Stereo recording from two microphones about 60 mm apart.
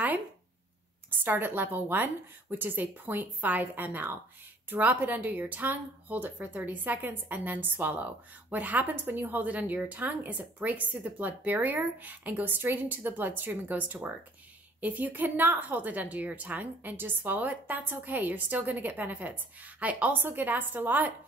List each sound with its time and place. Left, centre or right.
1.1 s a woman's voice: right